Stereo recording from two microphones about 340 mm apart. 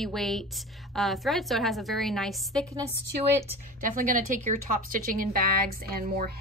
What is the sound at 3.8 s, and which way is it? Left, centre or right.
Speech, right.